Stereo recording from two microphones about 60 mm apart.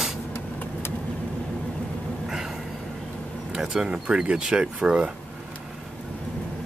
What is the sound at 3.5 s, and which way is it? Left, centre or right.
Speech, centre.